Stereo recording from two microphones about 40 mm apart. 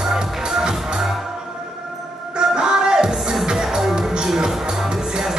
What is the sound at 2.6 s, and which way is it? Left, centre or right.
Music, centre.